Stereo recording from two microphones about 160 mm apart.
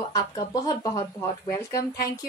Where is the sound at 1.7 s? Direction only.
70° left (ahead or behind).